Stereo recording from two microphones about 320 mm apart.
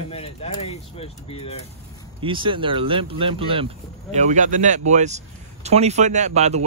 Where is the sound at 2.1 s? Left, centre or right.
Centre.